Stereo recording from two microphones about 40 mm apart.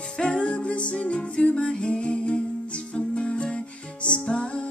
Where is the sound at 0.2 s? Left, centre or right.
Left.